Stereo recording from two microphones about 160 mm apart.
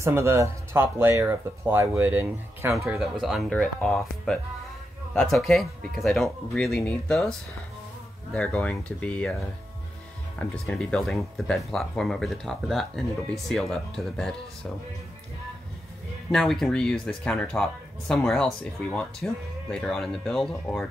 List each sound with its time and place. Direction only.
0.0 s speech: 15° right (ahead or behind)
2.9 s speech: centre (ahead or behind)
10.4 s speech: 5° left (ahead or behind)
16.3 s speech: centre (ahead or behind)